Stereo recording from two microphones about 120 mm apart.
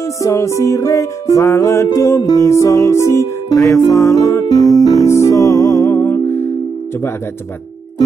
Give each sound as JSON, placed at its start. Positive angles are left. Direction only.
{"t": 0.0, "sound": "music", "side_deg": 25}